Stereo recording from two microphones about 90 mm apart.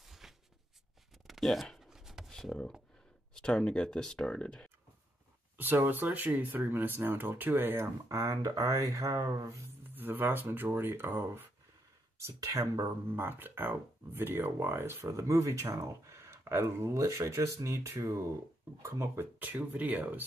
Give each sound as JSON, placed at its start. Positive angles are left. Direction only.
{"t": 0.0, "sound": "a sound", "side_deg": -5}
{"t": 1.2, "sound": "shuffling cards", "side_deg": 0}
{"t": 3.3, "sound": "speech", "side_deg": 10}
{"t": 5.6, "sound": "speech", "side_deg": -20}
{"t": 9.9, "sound": "speech", "side_deg": -20}
{"t": 13.1, "sound": "speech", "side_deg": -25}
{"t": 19.4, "sound": "speech", "side_deg": -20}